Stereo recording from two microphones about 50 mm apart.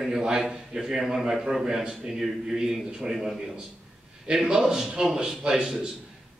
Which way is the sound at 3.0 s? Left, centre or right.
Centre.